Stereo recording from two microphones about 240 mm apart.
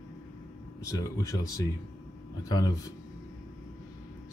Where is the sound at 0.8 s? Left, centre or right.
Centre.